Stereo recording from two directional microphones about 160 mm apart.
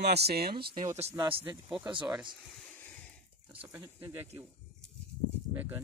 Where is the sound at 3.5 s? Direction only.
10° right (ahead or behind).